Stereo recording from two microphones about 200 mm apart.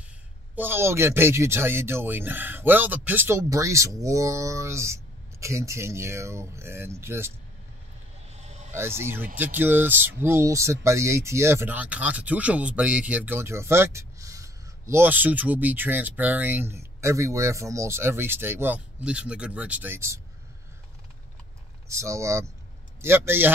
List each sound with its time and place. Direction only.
0.6 s speech: 10° right (ahead or behind)
8.3 s a sound: 35° right (ahead or behind)
8.7 s speech: 10° right (ahead or behind)
21.8 s speech: 15° right (ahead or behind)